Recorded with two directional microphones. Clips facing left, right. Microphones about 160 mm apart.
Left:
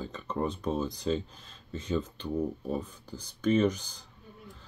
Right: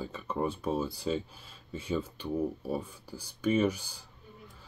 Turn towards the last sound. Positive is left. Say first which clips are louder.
# left 2 dB
turn(degrees=-10)  # may be behind; listen again after turning